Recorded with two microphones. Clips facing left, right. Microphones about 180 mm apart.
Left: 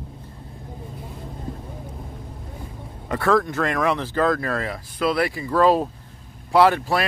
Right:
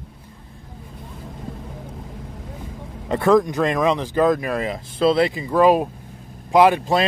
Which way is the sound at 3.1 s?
20° right (ahead or behind).